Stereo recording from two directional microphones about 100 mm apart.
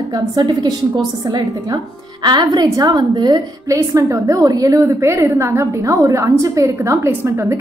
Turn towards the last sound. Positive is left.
turn(degrees=-25)  # may be behind; listen again after turning